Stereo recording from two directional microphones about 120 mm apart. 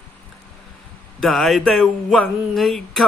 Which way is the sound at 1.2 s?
Centre (ahead or behind).